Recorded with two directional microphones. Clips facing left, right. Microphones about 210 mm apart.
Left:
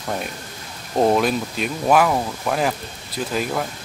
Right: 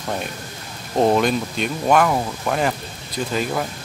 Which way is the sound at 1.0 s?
Centre (ahead or behind).